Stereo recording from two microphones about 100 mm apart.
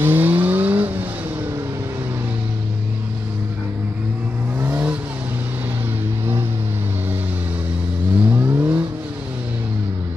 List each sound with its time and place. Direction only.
0.0 s vehicle: 20° right (ahead or behind)
4.6 s vehicle: 25° right (ahead or behind)
8.2 s vehicle: 20° right (ahead or behind)